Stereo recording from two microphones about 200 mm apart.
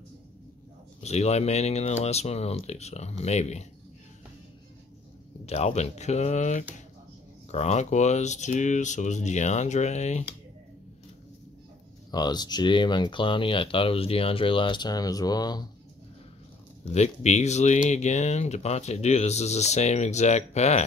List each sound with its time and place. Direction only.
1.0 s speech: 35° left (ahead or behind)
5.4 s speech: 30° left (ahead or behind)
12.1 s speech: 20° left (ahead or behind)
16.9 s speech: 35° left (ahead or behind)